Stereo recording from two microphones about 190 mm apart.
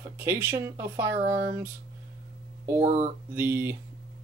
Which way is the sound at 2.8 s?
40° right (ahead or behind).